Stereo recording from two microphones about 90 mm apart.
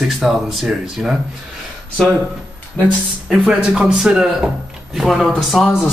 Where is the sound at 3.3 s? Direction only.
10° right (ahead or behind).